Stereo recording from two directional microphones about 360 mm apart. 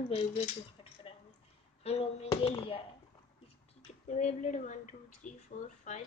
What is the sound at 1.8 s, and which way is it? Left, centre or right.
Speech, centre.